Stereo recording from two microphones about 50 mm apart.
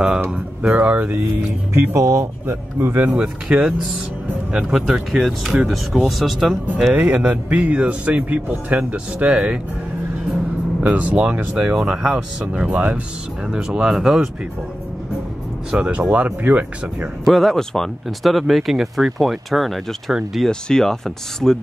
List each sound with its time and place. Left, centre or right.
0.6 s speech: right
1.7 s speech: right
2.0 s speech: right
2.4 s speech: right
3.2 s speech: right
4.7 s speech: centre
6.9 s speech: right
10.8 s speech: right
11.5 s speech: centre; by 13.0 s right
13.5 s speech: centre
15.7 s speech: right
16.1 s speech: right
17.2 s speech: centre
20.4 s speech: centre